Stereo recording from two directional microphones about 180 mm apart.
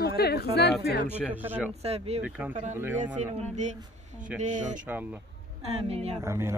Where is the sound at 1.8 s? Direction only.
35° right (ahead or behind).